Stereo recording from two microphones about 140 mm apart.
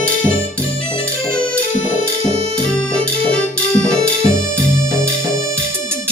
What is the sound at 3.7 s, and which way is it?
Music, 5° left (ahead or behind).